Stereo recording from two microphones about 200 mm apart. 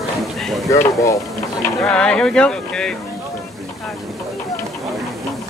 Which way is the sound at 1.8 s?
5° left (ahead or behind).